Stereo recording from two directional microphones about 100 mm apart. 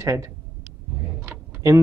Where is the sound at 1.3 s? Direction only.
30° right (ahead or behind).